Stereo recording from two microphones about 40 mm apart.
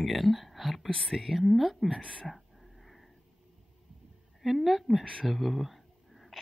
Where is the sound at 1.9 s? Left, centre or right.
Left.